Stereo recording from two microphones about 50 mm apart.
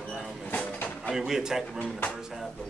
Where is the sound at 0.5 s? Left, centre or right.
Left.